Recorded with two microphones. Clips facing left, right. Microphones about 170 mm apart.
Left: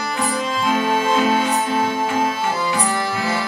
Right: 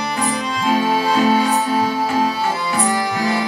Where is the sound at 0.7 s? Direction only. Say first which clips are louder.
Right 2 dB; 35° right (ahead or behind).